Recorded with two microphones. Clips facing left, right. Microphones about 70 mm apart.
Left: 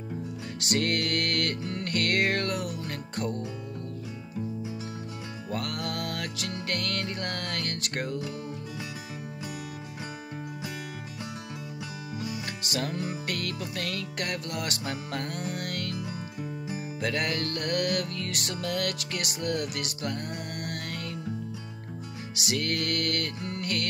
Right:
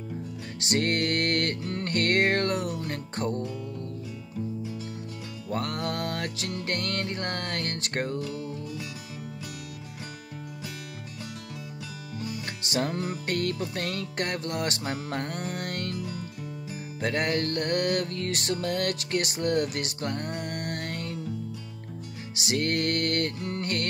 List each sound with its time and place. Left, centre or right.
0.6 s music: right
5.5 s music: right
12.7 s music: right
17.0 s music: right
22.3 s music: right